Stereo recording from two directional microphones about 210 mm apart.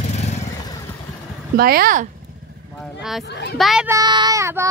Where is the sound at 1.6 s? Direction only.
45° right (ahead or behind).